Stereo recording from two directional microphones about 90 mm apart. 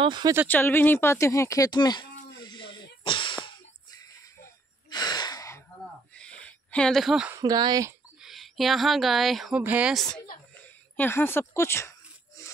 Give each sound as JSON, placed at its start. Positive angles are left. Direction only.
{"t": 0.5, "sound": "a sound", "side_deg": 20}
{"t": 4.8, "sound": "gasp", "side_deg": 50}
{"t": 6.1, "sound": "a sound", "side_deg": 10}
{"t": 7.3, "sound": "speech", "side_deg": -50}
{"t": 8.2, "sound": "speech", "side_deg": 0}
{"t": 9.6, "sound": "speech", "side_deg": -15}
{"t": 9.9, "sound": "speech", "side_deg": 5}
{"t": 11.0, "sound": "a woman's voice", "side_deg": 25}